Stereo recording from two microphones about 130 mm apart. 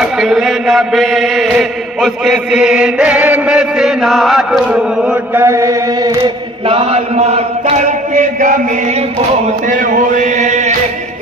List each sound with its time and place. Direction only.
0.0 s chant: centre (ahead or behind)
5.3 s chant: 20° right (ahead or behind)
6.7 s chant: 50° right (ahead or behind); by 8.5 s 80° right
9.7 s a sound: 85° right; by 10.7 s 65° right (ahead or behind)